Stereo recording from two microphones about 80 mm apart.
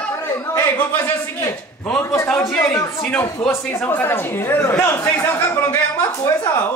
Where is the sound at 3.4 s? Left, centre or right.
Left.